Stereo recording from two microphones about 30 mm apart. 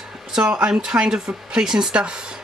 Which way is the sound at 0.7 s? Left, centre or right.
Right.